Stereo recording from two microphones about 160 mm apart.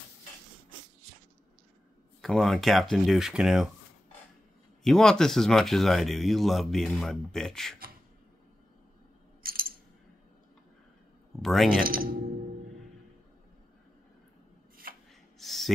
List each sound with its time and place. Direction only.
2.2 s speech: 5° left (ahead or behind)
4.8 s speech: 5° left (ahead or behind)
9.4 s coin: 65° right (ahead or behind)
11.4 s speech: centre (ahead or behind)
11.8 s speech: 65° right (ahead or behind)
14.8 s shuffling cards: 65° right (ahead or behind)
15.3 s a sound: centre (ahead or behind)